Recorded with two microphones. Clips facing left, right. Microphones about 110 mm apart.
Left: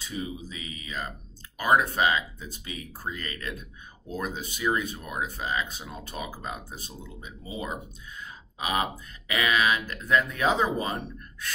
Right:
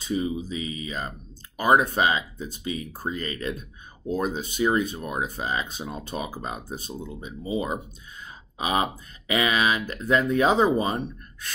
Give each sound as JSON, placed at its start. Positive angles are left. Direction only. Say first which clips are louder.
{"t": 0.5, "sound": "speech", "louder": "right 8 dB", "side_deg": -25}